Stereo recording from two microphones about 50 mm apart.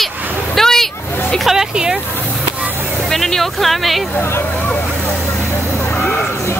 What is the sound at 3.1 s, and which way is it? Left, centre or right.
Speech, centre.